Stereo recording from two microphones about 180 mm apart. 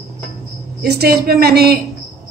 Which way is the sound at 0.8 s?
60° right (ahead or behind).